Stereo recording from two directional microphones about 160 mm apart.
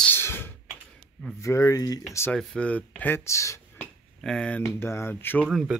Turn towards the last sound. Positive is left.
turn(degrees=-5)  # may be behind; listen again after turning